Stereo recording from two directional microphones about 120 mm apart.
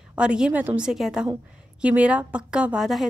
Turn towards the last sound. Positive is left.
turn(degrees=-5)  # may be behind; listen again after turning